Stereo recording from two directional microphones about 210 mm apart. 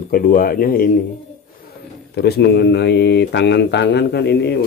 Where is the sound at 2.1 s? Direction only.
50° left (ahead or behind).